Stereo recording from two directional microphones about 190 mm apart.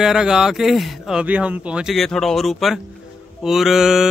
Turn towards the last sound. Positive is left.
turn(degrees=0)  # may be behind; listen again after turning